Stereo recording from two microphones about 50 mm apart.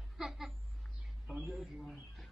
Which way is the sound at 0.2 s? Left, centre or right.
Centre.